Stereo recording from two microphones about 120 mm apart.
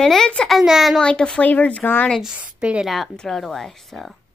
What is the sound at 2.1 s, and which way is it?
A woman's voice, 5° right (ahead or behind).